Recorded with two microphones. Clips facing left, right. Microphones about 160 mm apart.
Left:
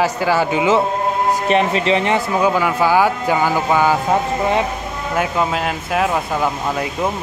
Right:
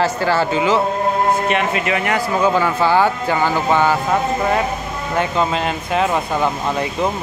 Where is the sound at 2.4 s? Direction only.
10° left (ahead or behind).